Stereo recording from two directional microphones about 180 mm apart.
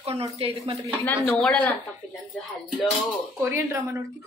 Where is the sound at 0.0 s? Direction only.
35° right (ahead or behind).